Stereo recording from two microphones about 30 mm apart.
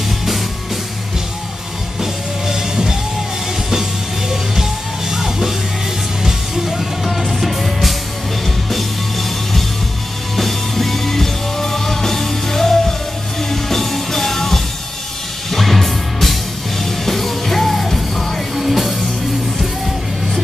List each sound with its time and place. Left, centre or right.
2.0 s music: centre
5.1 s music: centre
7.1 s music: centre
10.3 s music: centre